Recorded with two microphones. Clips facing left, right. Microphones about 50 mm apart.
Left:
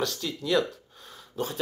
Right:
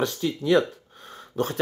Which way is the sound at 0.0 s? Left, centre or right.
Right.